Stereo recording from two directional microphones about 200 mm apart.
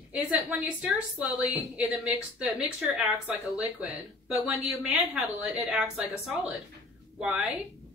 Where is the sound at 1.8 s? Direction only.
5° right (ahead or behind).